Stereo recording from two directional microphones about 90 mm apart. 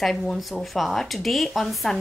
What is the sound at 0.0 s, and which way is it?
Speech, 5° left (ahead or behind).